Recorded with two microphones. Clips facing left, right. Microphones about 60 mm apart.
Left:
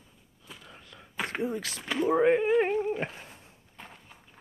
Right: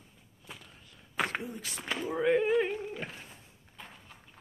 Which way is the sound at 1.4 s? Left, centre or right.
Left.